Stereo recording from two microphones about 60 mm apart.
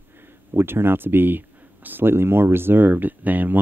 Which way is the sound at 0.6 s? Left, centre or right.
Right.